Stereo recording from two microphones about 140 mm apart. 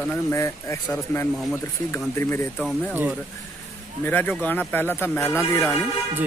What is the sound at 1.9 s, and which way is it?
Speech, 20° left (ahead or behind).